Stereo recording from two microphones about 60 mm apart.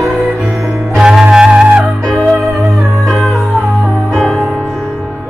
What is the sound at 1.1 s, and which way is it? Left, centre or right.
Music, centre.